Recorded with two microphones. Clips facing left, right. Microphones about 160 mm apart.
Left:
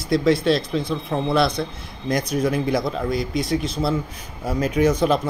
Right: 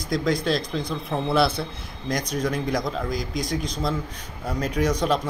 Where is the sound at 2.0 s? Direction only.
5° left (ahead or behind).